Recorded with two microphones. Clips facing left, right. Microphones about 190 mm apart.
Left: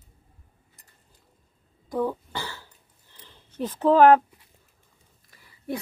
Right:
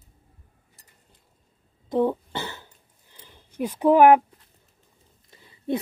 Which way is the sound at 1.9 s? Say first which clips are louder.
Right 4 dB; 25° right (ahead or behind).